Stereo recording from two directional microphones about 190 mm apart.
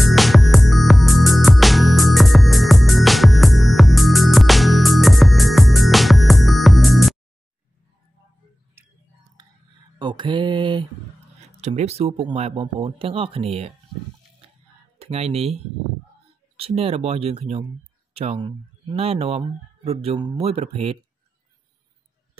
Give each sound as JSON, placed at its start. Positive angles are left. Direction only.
{"t": 0.0, "sound": "music", "side_deg": 0}
{"t": 8.8, "sound": "chewing", "side_deg": -10}
{"t": 9.9, "sound": "mantra", "side_deg": -25}
{"t": 11.6, "sound": "speech", "side_deg": -35}
{"t": 15.0, "sound": "speech", "side_deg": -30}